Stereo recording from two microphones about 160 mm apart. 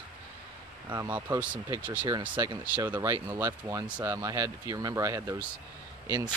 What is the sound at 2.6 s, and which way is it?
Speech, 15° right (ahead or behind).